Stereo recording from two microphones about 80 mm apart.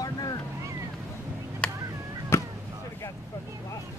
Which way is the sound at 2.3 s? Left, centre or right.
Left.